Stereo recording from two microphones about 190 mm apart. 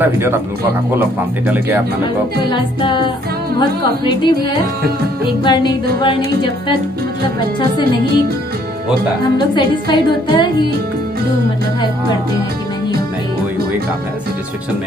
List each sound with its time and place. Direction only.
0.0 s a man's voice: 15° right (ahead or behind)
2.5 s speech: 25° left (ahead or behind)
5.4 s speech: 25° left (ahead or behind)
9.6 s speech: 25° left (ahead or behind)